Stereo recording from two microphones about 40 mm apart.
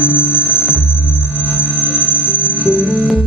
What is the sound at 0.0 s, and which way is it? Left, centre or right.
Music, right.